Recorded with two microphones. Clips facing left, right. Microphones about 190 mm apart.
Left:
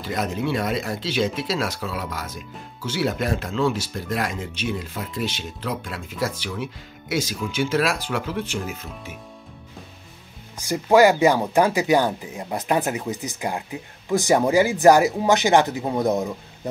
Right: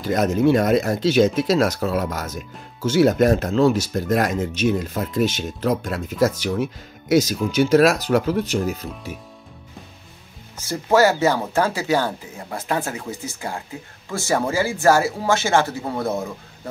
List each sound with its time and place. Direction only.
0.0 s speech: 45° right (ahead or behind)
10.6 s speech: 15° left (ahead or behind)